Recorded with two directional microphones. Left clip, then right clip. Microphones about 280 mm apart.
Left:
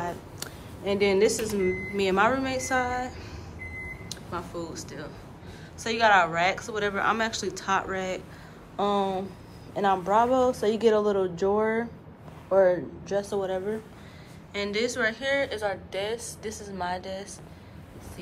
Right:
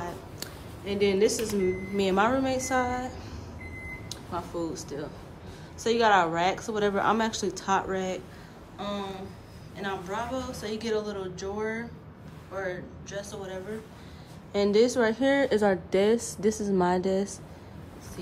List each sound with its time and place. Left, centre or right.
0.0 s a sound: centre
1.6 s a woman's voice: centre
14.5 s a woman's voice: centre